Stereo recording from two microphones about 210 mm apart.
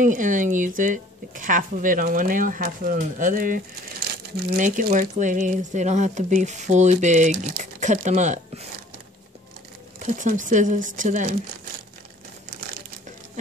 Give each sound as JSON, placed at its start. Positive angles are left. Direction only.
{"t": 0.0, "sound": "speech", "side_deg": -40}
{"t": 9.9, "sound": "speech", "side_deg": -35}